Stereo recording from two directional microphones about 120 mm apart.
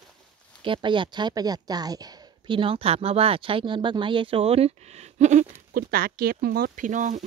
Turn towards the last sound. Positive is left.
turn(degrees=-90)